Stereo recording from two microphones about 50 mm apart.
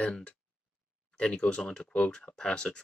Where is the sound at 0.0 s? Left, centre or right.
Left.